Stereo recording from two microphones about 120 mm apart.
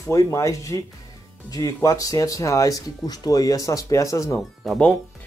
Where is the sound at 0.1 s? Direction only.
25° left (ahead or behind).